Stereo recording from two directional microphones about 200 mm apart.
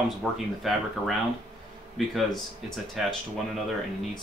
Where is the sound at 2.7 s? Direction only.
Centre (ahead or behind).